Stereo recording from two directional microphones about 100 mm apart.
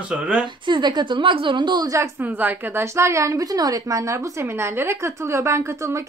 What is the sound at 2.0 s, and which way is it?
A woman's voice, 20° right (ahead or behind).